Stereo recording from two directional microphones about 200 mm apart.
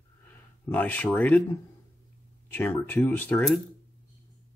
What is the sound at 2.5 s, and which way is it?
Speech, 10° left (ahead or behind).